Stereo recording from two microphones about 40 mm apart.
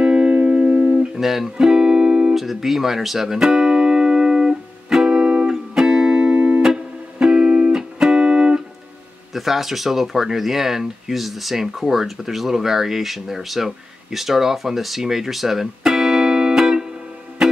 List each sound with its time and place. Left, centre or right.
0.0 s music: right
1.2 s music: centre
1.6 s music: centre
2.3 s music: centre
6.3 s music: right
6.6 s music: centre
9.3 s speech: centre
17.4 s music: centre